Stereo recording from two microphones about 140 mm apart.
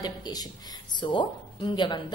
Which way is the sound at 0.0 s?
30° left (ahead or behind).